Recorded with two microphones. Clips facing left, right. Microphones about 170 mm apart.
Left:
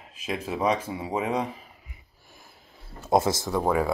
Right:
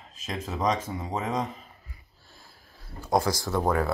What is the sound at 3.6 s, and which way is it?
Speech, 10° left (ahead or behind).